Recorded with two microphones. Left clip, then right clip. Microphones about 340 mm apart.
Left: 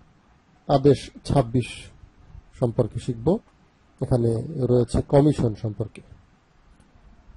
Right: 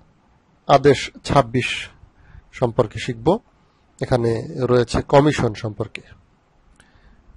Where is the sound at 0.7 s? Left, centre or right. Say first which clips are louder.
Right 5 dB; right.